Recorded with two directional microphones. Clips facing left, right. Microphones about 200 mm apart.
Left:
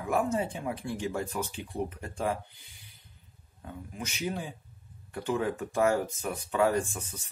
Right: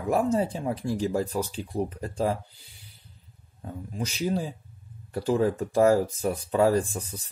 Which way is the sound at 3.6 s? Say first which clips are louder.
Right 6 dB; 35° right (ahead or behind).